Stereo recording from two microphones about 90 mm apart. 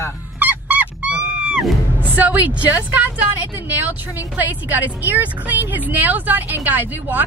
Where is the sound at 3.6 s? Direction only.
20° right (ahead or behind).